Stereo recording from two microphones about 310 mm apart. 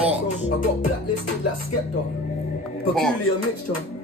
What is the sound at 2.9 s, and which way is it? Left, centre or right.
Speech, centre.